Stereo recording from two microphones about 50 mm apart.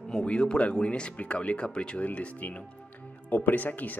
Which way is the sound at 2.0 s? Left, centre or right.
Left.